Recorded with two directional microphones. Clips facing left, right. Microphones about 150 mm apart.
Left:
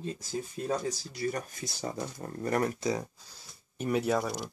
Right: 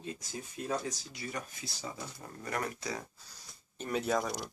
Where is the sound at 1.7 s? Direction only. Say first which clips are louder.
Left 7 dB; 55° left (ahead or behind).